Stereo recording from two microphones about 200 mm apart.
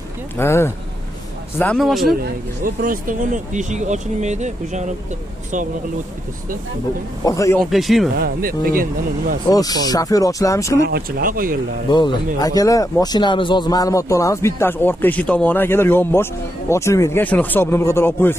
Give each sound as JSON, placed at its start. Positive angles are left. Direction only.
{"t": 0.4, "sound": "speech", "side_deg": 10}
{"t": 2.6, "sound": "speech", "side_deg": -45}
{"t": 7.2, "sound": "speech", "side_deg": 15}
{"t": 7.7, "sound": "speech", "side_deg": 0}
{"t": 8.2, "sound": "speech", "side_deg": -45}
{"t": 9.5, "sound": "speech", "side_deg": 20}
{"t": 10.9, "sound": "speech", "side_deg": -50}
{"t": 12.4, "sound": "speech", "side_deg": 20}